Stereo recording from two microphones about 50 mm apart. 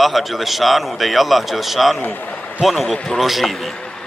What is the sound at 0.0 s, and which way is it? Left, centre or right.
A man's voice, centre.